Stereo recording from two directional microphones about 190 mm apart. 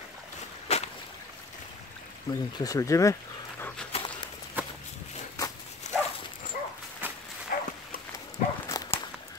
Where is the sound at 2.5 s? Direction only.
20° left (ahead or behind).